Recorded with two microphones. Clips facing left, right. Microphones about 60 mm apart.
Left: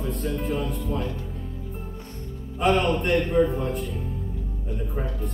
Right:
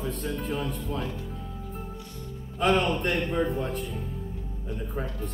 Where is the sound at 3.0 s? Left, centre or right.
Centre.